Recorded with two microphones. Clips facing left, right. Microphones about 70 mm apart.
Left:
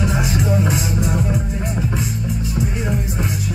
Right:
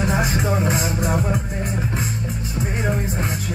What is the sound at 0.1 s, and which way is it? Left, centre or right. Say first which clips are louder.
Music: even; right.